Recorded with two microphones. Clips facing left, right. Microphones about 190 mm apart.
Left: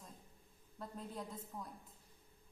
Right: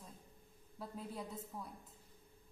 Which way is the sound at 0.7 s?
5° right (ahead or behind).